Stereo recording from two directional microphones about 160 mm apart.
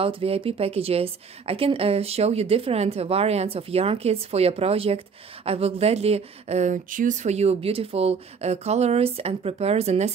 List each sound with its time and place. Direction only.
0.0 s a woman's voice: 35° right (ahead or behind)